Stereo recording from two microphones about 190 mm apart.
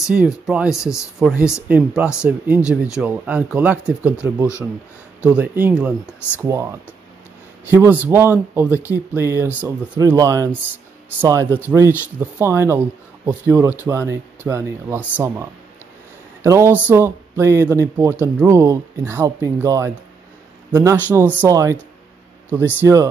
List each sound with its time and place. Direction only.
0.0 s speech: 5° right (ahead or behind)
16.4 s speech: 15° right (ahead or behind)
22.8 s speech: 15° right (ahead or behind)